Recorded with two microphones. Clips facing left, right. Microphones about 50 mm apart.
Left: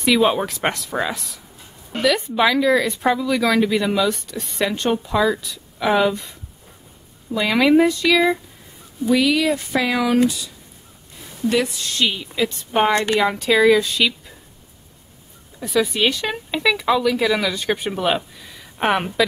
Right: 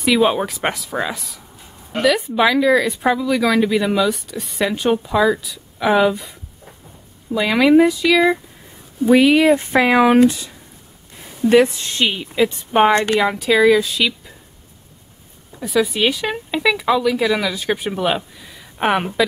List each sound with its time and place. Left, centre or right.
0.0 s speech: centre
7.3 s speech: centre
9.0 s speech: right; by 13.0 s centre
13.2 s speech: centre
15.6 s speech: centre